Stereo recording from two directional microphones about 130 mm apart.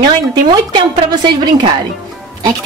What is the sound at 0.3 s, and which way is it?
A woman's voice, 35° right (ahead or behind).